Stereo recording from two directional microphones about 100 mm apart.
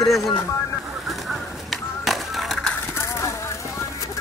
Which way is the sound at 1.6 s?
Centre (ahead or behind).